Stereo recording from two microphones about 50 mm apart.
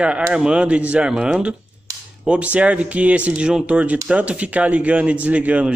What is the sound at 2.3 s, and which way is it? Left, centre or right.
A man's voice, right.